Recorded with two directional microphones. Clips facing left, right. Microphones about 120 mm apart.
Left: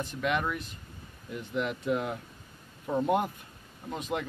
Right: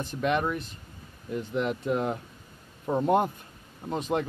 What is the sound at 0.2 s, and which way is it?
A man's voice, 35° right (ahead or behind).